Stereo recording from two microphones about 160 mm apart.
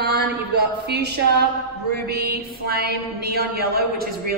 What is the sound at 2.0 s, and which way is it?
Mantra, 80° right.